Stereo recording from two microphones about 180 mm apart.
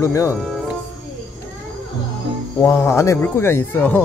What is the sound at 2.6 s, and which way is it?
Speech, 15° left (ahead or behind).